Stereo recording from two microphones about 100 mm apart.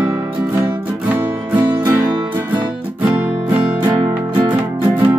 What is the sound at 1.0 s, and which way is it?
Music, 15° right (ahead or behind).